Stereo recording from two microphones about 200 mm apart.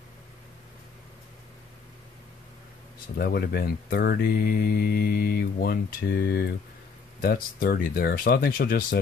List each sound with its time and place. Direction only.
3.2 s speech: 50° left (ahead or behind)